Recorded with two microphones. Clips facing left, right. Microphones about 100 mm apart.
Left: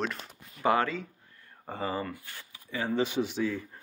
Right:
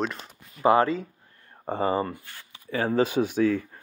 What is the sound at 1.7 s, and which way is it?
Speech, 50° right (ahead or behind).